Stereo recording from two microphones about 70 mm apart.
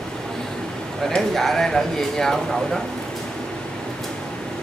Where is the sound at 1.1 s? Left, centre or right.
Centre.